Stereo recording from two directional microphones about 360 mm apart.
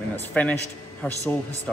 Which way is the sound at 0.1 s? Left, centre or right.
Centre.